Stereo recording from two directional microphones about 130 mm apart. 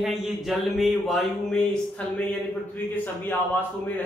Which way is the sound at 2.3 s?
15° left (ahead or behind).